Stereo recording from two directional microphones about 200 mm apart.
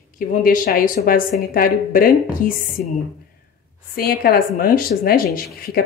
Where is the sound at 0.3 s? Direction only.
45° left (ahead or behind).